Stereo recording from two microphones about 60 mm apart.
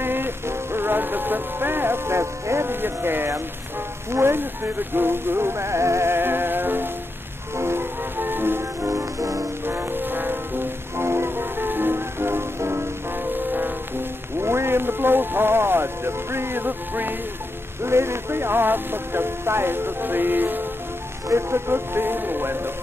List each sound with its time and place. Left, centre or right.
0.0 s music: right
4.1 s speech: right
7.5 s music: right
13.5 s music: right
14.4 s speech: right
17.8 s speech: right
21.3 s speech: right